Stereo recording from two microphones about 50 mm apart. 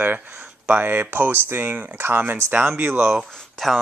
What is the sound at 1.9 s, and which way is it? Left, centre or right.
Speech, right.